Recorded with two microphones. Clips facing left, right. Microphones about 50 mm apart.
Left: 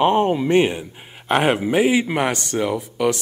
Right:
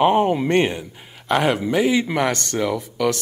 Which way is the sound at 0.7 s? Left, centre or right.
Left.